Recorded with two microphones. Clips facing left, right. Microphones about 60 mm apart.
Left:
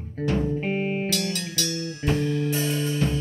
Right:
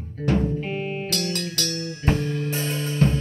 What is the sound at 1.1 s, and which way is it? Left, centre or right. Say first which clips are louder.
Music: right 1 dB; right.